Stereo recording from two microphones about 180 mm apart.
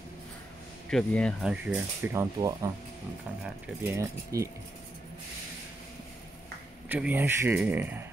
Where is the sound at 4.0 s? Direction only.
15° right (ahead or behind).